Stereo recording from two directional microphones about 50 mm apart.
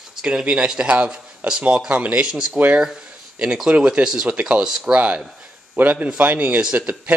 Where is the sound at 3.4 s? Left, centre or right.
Centre.